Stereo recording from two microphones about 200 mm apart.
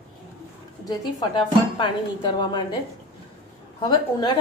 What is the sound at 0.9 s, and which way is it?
Speech, 20° left (ahead or behind).